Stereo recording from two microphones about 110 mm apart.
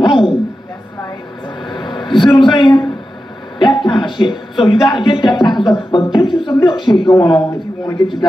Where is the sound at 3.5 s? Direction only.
40° left (ahead or behind).